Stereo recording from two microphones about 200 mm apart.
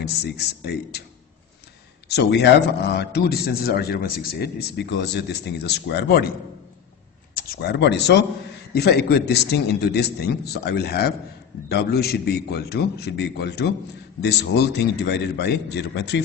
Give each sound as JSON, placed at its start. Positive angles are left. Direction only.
{"t": 0.0, "sound": "a man's voice", "side_deg": 55}
{"t": 2.0, "sound": "a man's voice", "side_deg": 60}
{"t": 7.3, "sound": "a man's voice", "side_deg": 50}